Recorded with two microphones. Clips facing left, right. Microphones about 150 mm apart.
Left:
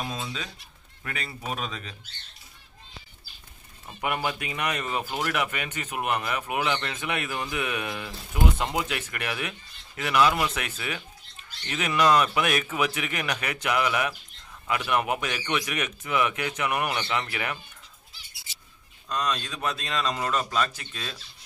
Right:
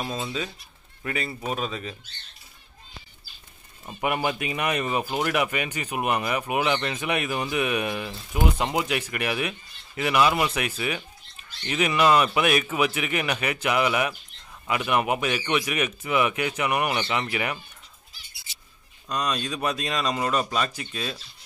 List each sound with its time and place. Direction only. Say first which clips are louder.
1.0 s speech: right 5 dB; 5° right (ahead or behind)
3.8 s speech: right 3 dB; 20° right (ahead or behind)
19.0 s speech: right 2 dB; 10° right (ahead or behind)